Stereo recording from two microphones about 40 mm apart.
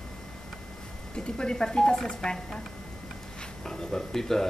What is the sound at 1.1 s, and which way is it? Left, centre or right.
Speech, left.